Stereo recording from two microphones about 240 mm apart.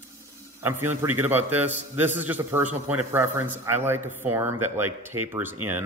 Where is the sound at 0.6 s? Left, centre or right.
Centre.